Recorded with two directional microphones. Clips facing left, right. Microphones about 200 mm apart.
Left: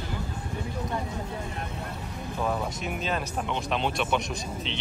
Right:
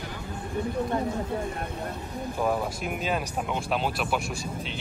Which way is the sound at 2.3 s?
10° right (ahead or behind).